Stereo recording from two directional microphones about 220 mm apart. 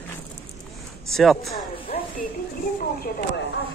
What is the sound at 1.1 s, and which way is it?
Speech, centre (ahead or behind).